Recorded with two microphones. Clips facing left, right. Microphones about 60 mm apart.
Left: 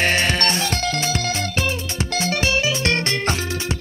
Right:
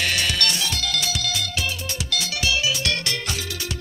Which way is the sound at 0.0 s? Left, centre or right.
Left.